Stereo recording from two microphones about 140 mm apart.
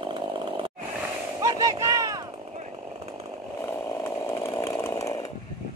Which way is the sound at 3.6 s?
15° left (ahead or behind).